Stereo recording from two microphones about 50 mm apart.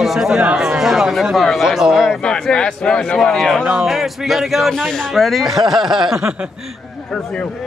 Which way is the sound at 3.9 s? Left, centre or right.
Centre.